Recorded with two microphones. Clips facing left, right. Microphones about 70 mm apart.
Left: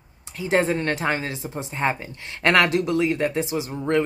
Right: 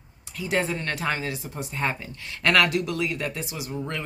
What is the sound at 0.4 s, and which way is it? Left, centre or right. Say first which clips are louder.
Speech: left 5 dB; left.